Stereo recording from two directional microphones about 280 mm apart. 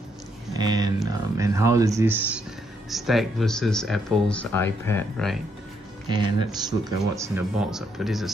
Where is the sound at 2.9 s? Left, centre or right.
Centre.